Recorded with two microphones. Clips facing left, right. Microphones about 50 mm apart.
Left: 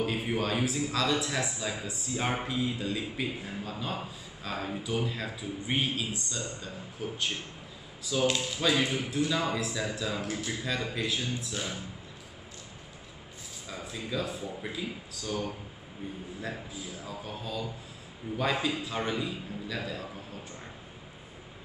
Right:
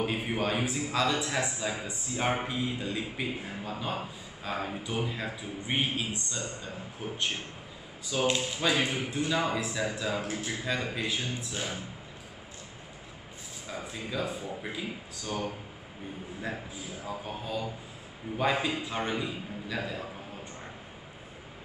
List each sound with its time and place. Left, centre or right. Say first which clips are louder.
0.0 s a man's voice: even; centre
13.7 s a man's voice: even; right
17.0 s a man's voice: right 4 dB; right